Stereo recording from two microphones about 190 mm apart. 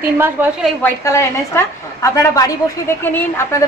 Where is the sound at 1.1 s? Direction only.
15° left (ahead or behind).